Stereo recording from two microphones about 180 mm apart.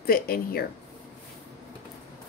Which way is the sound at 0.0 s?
55° left (ahead or behind).